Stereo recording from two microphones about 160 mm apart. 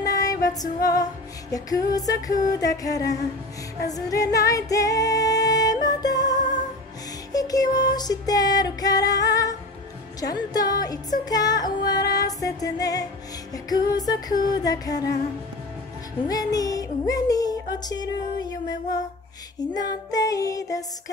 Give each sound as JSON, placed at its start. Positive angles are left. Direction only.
{"t": 0.0, "sound": "music", "side_deg": 20}
{"t": 16.3, "sound": "a sound", "side_deg": 25}
{"t": 19.7, "sound": "music", "side_deg": 25}